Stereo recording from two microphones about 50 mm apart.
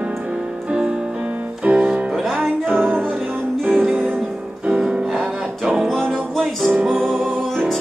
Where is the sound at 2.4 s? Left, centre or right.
Right.